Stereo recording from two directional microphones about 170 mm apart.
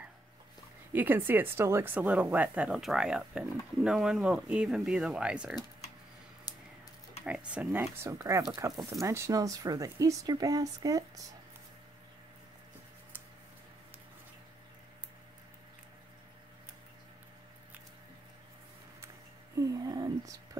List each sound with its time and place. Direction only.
0.9 s speech: 10° right (ahead or behind)
7.2 s speech: 5° right (ahead or behind)
19.5 s a sound: 20° right (ahead or behind)